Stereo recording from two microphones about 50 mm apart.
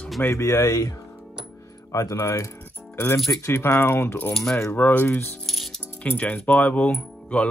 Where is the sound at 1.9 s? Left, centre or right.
Left.